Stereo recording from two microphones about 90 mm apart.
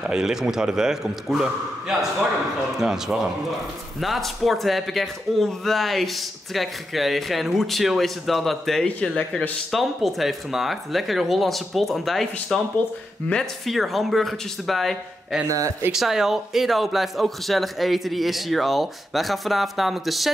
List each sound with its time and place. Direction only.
0.0 s a man's voice: 5° right (ahead or behind)
15.4 s speech: 35° right (ahead or behind)
15.9 s speech: 5° right (ahead or behind)